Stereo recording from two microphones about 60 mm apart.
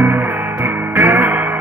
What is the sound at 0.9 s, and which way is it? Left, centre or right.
Music, right.